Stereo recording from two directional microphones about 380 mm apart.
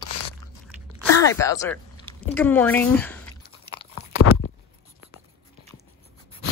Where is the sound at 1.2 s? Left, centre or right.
Centre.